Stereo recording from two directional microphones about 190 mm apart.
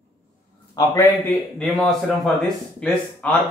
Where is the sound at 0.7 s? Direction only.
20° left (ahead or behind).